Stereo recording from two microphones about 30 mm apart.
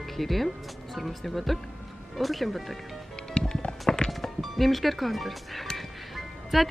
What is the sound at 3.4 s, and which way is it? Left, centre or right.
Music, left.